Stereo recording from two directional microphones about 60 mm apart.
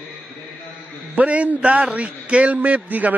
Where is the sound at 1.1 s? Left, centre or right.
Right.